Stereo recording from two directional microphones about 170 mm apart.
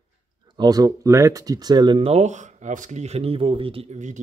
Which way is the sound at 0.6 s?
20° right (ahead or behind).